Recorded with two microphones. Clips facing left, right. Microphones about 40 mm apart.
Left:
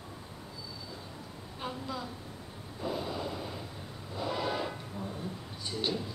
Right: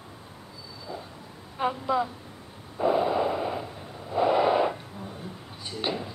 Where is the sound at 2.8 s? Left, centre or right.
Right.